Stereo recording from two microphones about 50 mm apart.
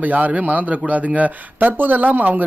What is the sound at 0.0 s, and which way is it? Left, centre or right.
Speech, right.